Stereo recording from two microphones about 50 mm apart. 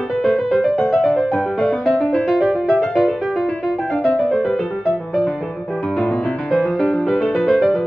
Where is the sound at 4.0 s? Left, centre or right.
Left.